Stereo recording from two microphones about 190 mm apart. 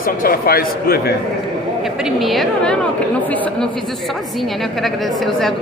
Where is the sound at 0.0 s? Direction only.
50° left (ahead or behind).